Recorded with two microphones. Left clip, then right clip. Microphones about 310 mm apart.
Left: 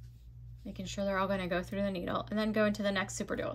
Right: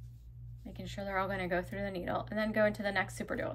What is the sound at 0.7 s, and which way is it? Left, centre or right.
A woman's voice, centre.